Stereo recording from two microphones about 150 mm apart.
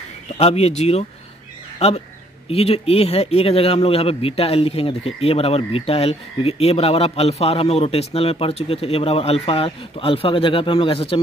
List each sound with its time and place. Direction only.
0.4 s speech: 45° left (ahead or behind)